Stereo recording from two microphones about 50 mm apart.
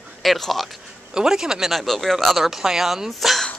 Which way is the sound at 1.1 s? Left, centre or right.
Centre.